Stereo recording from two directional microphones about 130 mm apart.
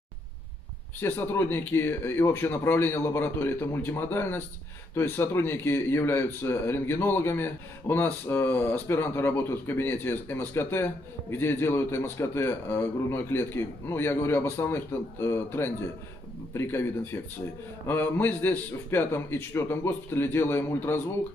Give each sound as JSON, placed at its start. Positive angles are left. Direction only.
{"t": 1.0, "sound": "a man's voice", "side_deg": 15}